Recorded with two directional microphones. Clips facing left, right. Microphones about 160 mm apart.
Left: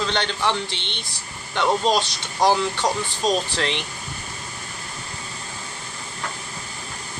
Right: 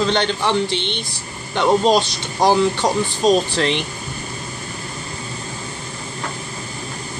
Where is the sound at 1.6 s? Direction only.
15° right (ahead or behind).